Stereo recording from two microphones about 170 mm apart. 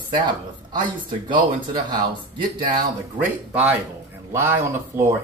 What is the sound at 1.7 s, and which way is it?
Speech, 25° right (ahead or behind).